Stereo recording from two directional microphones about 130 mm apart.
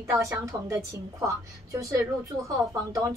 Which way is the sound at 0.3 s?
25° right (ahead or behind).